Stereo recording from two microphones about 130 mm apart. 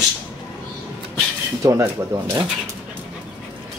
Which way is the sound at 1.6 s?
25° right (ahead or behind).